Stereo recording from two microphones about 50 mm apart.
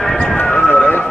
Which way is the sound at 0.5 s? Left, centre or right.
Left.